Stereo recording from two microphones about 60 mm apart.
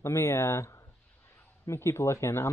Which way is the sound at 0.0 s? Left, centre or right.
Left.